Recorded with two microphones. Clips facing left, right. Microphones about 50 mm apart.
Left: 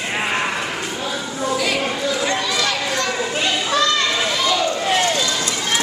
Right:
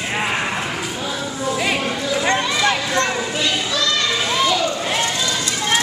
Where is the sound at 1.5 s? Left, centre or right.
Centre.